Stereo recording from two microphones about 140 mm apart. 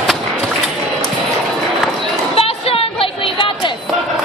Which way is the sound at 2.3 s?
45° left (ahead or behind).